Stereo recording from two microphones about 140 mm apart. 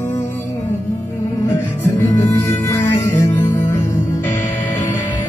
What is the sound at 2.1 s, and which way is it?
Music, 15° left (ahead or behind).